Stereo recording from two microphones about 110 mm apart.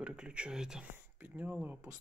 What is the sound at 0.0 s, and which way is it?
Speech, 10° right (ahead or behind).